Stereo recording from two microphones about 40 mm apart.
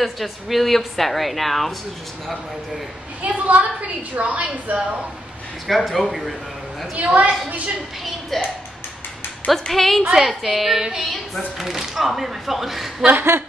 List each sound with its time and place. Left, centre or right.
0.0 s a woman's voice: centre
3.2 s a woman's voice: right
5.7 s a woman's voice: centre
7.0 s a woman's voice: right
8.3 s a woman's voice: centre
9.5 s a woman's voice: centre
13.1 s a sound: right